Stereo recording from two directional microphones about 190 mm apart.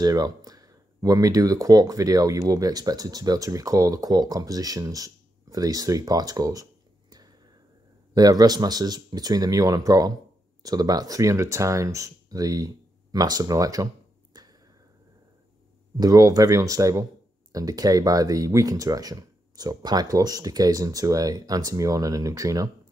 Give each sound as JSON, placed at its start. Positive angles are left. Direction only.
{"t": 0.0, "sound": "speech", "side_deg": -20}
{"t": 14.3, "sound": "a sound", "side_deg": -20}
{"t": 16.0, "sound": "speech", "side_deg": -20}